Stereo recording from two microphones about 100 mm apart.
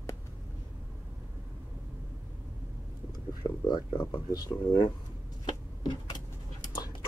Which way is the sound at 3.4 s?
25° left (ahead or behind).